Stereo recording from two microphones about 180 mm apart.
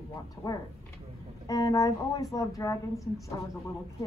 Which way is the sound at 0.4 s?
20° left (ahead or behind).